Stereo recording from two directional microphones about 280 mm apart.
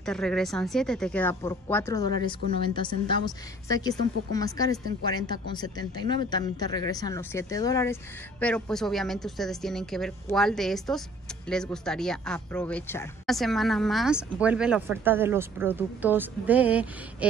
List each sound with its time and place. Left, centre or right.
0.0 s a woman's voice: centre